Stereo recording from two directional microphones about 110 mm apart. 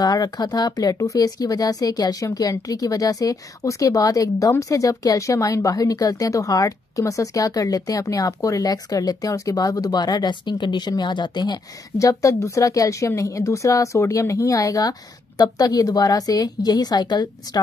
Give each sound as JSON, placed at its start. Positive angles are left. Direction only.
{"t": 0.0, "sound": "speech", "side_deg": 35}